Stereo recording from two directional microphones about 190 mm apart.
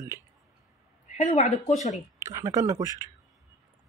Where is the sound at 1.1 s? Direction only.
35° left (ahead or behind).